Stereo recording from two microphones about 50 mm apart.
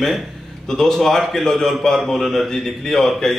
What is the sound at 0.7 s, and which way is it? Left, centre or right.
A man's voice, centre.